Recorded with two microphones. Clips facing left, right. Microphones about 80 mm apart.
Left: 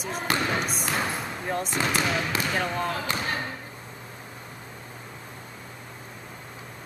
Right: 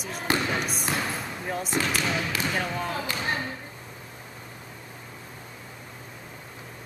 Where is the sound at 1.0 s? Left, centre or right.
Centre.